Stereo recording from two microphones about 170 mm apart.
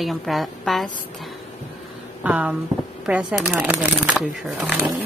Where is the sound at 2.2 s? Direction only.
10° right (ahead or behind).